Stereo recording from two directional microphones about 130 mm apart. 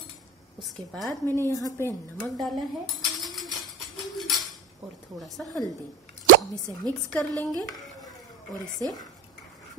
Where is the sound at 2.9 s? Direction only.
Centre (ahead or behind).